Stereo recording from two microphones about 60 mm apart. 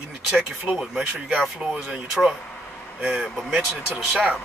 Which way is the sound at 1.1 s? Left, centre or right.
Centre.